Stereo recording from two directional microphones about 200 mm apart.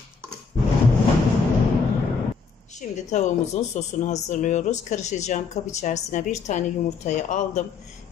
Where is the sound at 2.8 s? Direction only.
35° left (ahead or behind).